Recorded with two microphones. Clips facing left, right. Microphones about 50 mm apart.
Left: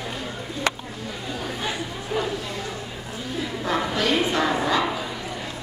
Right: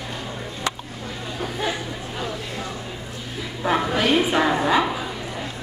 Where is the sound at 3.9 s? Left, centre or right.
Centre.